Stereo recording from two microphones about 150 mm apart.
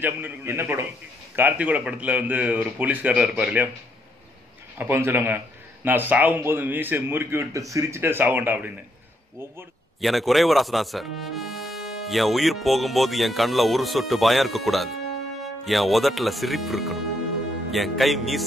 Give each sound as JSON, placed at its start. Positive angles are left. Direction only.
{"t": 0.0, "sound": "a man's voice", "side_deg": -15}
{"t": 4.7, "sound": "a man's voice", "side_deg": -15}
{"t": 9.9, "sound": "speech", "side_deg": 0}